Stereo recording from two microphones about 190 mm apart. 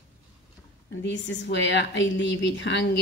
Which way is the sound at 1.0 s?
70° left (ahead or behind).